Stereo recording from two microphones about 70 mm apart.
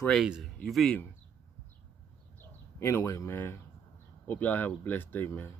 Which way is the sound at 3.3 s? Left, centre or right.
Left.